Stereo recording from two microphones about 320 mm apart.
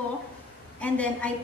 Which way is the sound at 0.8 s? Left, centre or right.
Centre.